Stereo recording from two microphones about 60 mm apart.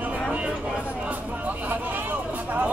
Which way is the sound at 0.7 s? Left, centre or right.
Centre.